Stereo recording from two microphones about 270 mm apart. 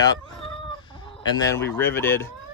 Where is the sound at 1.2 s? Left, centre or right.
Centre.